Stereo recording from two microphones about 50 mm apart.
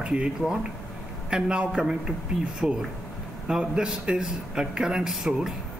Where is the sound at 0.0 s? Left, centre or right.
Centre.